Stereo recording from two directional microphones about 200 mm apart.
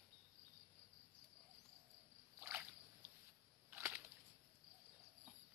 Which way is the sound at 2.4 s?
10° right (ahead or behind).